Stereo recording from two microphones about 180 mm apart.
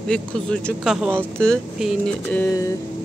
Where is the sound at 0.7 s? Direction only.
5° right (ahead or behind).